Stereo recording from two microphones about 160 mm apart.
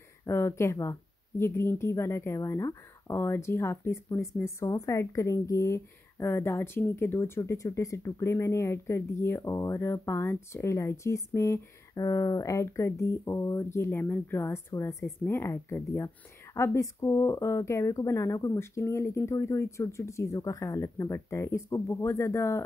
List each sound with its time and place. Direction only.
0.3 s a woman's voice: 15° left (ahead or behind)